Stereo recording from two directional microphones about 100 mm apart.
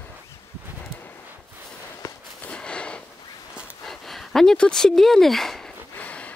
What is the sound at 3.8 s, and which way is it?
Speech, 5° left (ahead or behind).